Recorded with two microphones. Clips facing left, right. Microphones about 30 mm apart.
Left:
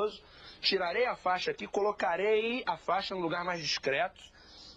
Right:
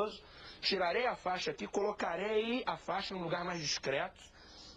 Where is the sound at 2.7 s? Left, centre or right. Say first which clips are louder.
Left 6 dB; left.